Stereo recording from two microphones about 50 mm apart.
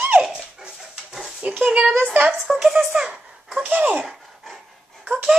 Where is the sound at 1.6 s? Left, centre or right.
Right.